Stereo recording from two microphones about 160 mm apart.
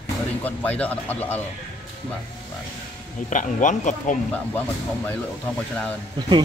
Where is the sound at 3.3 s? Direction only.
50° left (ahead or behind).